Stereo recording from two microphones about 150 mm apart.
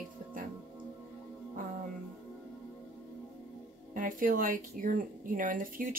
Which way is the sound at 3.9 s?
65° right (ahead or behind).